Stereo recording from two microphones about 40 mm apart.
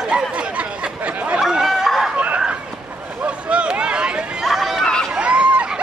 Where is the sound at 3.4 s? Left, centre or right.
Right.